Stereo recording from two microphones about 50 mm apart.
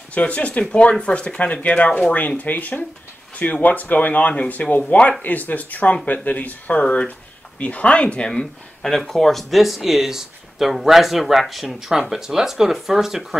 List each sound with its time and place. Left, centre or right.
0.1 s speech: left
2.1 s speech: left
8.3 s speech: centre